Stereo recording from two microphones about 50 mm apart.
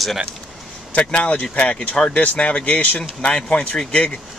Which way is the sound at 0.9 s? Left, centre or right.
Left.